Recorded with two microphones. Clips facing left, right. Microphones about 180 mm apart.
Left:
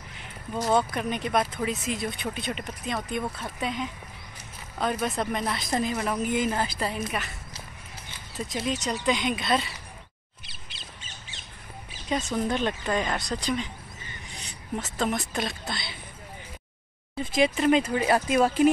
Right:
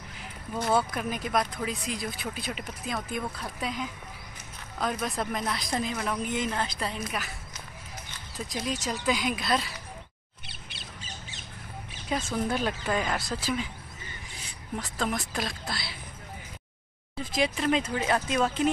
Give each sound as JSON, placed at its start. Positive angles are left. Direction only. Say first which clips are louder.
{"t": 0.7, "sound": "a woman's voice", "louder": "left 2 dB", "side_deg": -5}
{"t": 8.4, "sound": "a woman's voice", "louder": "left 3 dB", "side_deg": 0}
{"t": 12.1, "sound": "a woman's voice", "louder": "left 2 dB", "side_deg": 0}
{"t": 17.4, "sound": "a woman's voice", "louder": "left 5 dB", "side_deg": 0}